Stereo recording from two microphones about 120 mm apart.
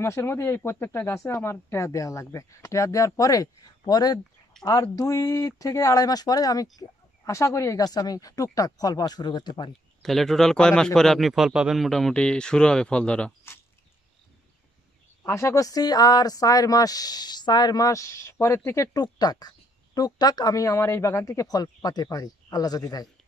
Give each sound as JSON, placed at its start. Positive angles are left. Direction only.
{"t": 0.0, "sound": "speech", "side_deg": 20}
{"t": 10.0, "sound": "a man's voice", "side_deg": 0}
{"t": 15.2, "sound": "speech", "side_deg": 25}
{"t": 18.9, "sound": "speech", "side_deg": 35}